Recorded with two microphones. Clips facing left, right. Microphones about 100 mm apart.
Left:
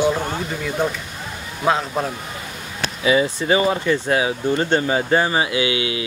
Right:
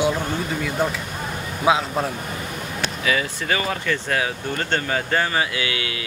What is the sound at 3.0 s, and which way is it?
Speech, 20° left (ahead or behind).